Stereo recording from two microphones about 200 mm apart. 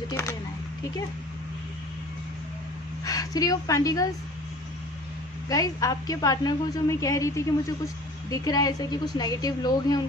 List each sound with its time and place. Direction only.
0.1 s speech: 15° left (ahead or behind)
3.1 s a woman's voice: 20° left (ahead or behind)
5.5 s a woman's voice: 15° left (ahead or behind)